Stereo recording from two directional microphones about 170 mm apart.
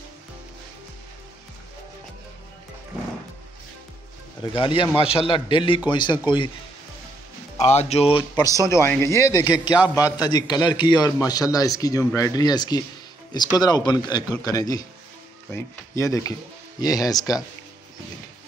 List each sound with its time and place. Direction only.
4.6 s a man's voice: 35° left (ahead or behind)
7.5 s a man's voice: 40° left (ahead or behind)
8.6 s a man's voice: 15° left (ahead or behind)